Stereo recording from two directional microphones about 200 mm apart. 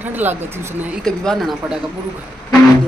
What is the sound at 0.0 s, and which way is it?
Speech, 10° right (ahead or behind).